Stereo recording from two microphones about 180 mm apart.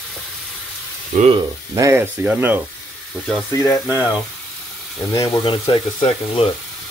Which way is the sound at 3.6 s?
15° left (ahead or behind).